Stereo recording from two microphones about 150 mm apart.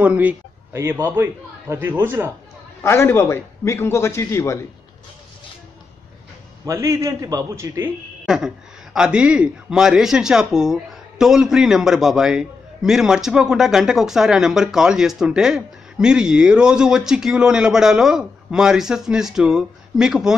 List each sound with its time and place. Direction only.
0.0 s a man's voice: 10° right (ahead or behind)
2.8 s a man's voice: 15° left (ahead or behind)
6.6 s a man's voice: 20° right (ahead or behind)
8.3 s a man's voice: 5° right (ahead or behind)